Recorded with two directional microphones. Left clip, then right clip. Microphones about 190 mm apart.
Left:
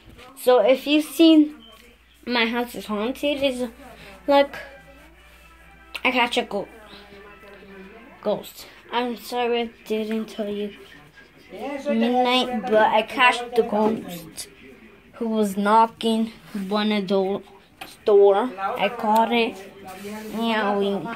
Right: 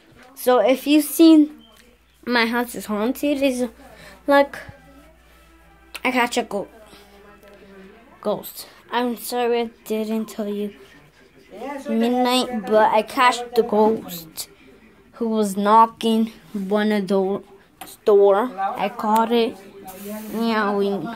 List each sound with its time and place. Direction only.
0.4 s speech: 20° right (ahead or behind)
3.5 s a sound: 30° right (ahead or behind)
4.3 s speech: 15° right (ahead or behind)
5.9 s a woman's voice: 20° right (ahead or behind)
8.2 s speech: 20° right (ahead or behind)
11.8 s a woman's voice: 30° right (ahead or behind)
19.9 s speech: 40° right (ahead or behind)
20.3 s speech: 25° right (ahead or behind)